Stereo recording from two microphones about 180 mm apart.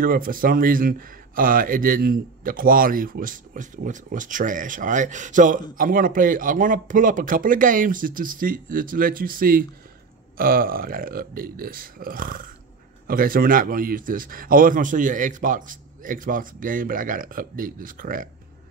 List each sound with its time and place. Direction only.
0.0 s speech: 50° right (ahead or behind)